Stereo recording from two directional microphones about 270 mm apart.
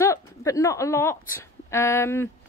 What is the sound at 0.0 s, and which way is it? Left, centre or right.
A woman's voice, centre.